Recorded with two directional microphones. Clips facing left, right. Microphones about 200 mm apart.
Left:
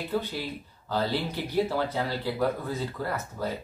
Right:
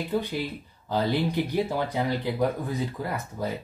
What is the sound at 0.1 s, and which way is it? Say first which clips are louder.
Speech: right 1 dB; 15° right (ahead or behind).